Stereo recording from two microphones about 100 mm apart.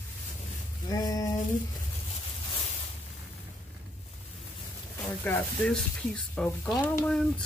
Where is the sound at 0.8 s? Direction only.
40° left (ahead or behind).